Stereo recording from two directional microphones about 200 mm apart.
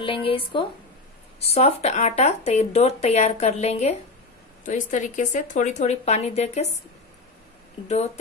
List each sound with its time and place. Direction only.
0.0 s a woman's voice: 25° left (ahead or behind)